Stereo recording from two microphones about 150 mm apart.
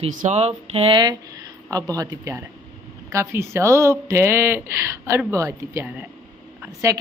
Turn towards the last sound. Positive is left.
turn(degrees=-20)  # may be behind; listen again after turning